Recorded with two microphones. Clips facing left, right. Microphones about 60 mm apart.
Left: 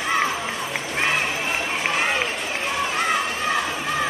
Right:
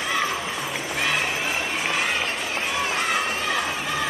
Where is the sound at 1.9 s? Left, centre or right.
Centre.